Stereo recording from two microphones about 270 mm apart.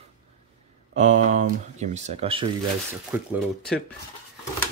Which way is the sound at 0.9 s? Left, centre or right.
Right.